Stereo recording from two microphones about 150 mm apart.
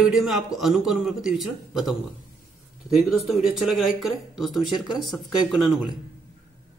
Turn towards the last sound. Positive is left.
turn(degrees=0)  # may be behind; listen again after turning